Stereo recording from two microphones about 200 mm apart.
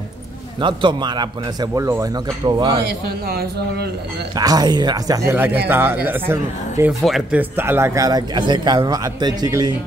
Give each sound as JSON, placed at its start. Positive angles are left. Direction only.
{"t": 0.6, "sound": "a man's voice", "side_deg": -25}
{"t": 2.9, "sound": "a man's voice", "side_deg": -50}
{"t": 4.4, "sound": "a man's voice", "side_deg": -20}
{"t": 7.0, "sound": "speech", "side_deg": 0}